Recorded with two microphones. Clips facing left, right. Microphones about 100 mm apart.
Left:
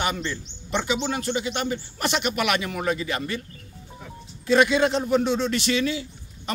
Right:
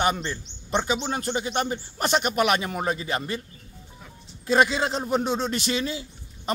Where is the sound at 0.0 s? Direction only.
35° right (ahead or behind).